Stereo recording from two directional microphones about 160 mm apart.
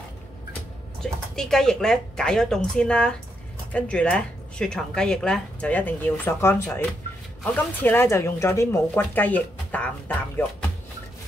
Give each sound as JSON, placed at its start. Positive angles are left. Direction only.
{"t": 1.0, "sound": "speech", "side_deg": 5}